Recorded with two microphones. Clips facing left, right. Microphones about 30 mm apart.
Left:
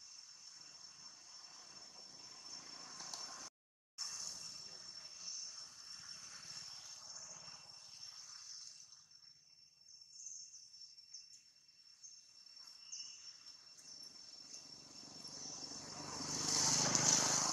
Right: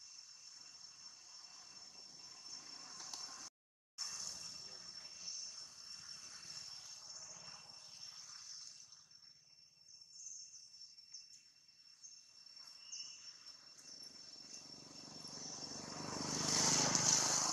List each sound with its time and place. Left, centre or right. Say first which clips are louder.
0.0 s vehicle: even; centre
3.2 s a sound: left 1 dB; centre
3.9 s vehicle: even; centre
12.6 s a sound: right 1 dB; centre
16.3 s vehicle: right 1 dB; right
16.7 s vehicle: even; centre
17.2 s vehicle: left 1 dB; centre